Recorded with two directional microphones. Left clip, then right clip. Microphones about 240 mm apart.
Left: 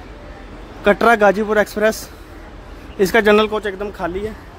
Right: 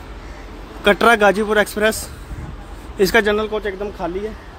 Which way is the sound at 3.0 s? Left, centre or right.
Centre.